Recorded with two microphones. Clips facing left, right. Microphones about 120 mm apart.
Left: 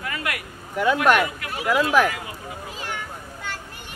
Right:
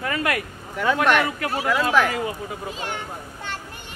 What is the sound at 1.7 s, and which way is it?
Speech, 10° left (ahead or behind).